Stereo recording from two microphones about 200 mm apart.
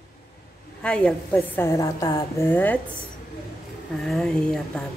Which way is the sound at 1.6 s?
15° left (ahead or behind).